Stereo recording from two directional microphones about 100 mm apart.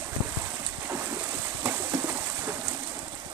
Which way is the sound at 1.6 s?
25° right (ahead or behind).